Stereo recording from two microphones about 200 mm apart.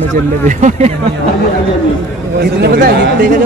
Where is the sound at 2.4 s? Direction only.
50° right (ahead or behind).